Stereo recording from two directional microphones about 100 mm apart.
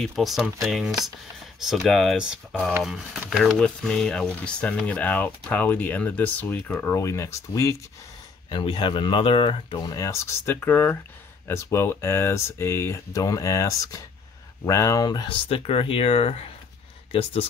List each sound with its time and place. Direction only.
0.0 s speech: centre (ahead or behind); by 7.7 s 30° left (ahead or behind)
8.5 s speech: 50° left (ahead or behind)
9.8 s speech: 30° left (ahead or behind)
15.4 s speech: 75° left (ahead or behind)